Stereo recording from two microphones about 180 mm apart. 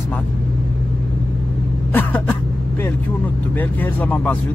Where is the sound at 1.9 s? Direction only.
10° left (ahead or behind).